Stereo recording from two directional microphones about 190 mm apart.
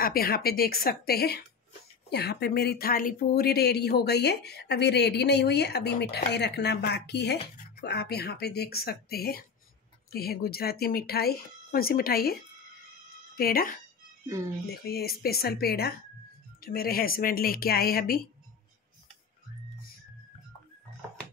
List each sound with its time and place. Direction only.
0.0 s a woman's voice: 50° left (ahead or behind)
13.4 s speech: 50° left (ahead or behind)
14.2 s speech: 15° right (ahead or behind)
14.7 s a woman's voice: 55° left (ahead or behind)